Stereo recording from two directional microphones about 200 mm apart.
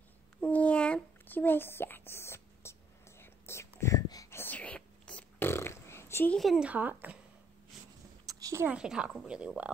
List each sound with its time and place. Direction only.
0.4 s a sound: 5° left (ahead or behind)
3.2 s whispering: 10° left (ahead or behind); by 7.2 s 10° right (ahead or behind)
8.3 s a woman's voice: 15° right (ahead or behind)